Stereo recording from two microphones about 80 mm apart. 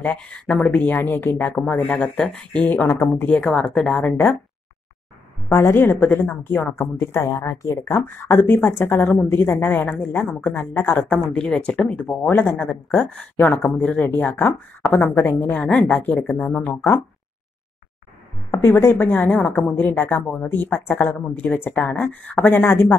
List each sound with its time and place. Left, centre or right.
0.0 s speech: centre
2.7 s speech: left
3.3 s speech: centre
5.5 s a woman's voice: left
8.0 s speech: left
15.5 s speech: centre
18.5 s speech: left